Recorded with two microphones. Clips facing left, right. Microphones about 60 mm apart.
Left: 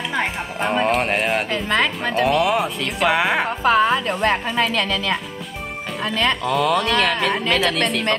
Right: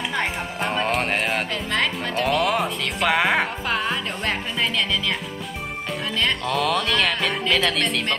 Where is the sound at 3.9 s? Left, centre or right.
Left.